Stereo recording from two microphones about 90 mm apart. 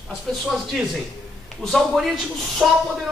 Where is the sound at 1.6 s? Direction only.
5° left (ahead or behind).